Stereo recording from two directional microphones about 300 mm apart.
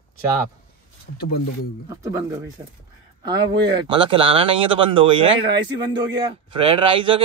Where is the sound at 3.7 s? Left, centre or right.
Centre.